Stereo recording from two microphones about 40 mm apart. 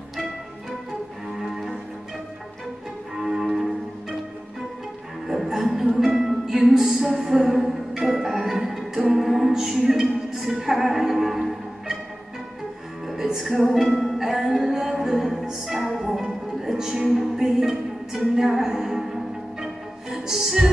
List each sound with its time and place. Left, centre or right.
1.3 s cello: centre
3.2 s cello: centre
5.3 s music: centre
13.0 s music: centre
15.1 s music: centre